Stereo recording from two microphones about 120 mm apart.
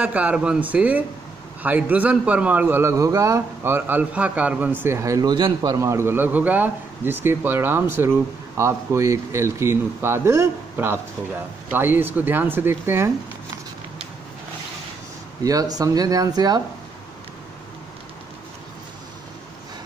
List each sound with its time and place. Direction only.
0.0 s a man's voice: 10° right (ahead or behind); by 5.3 s 25° right (ahead or behind)
5.3 s speech: 40° right (ahead or behind)
5.8 s a man's voice: 25° right (ahead or behind)
15.4 s speech: 30° right (ahead or behind)